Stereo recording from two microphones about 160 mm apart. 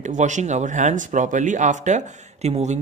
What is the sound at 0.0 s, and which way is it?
A man's voice, 50° right (ahead or behind).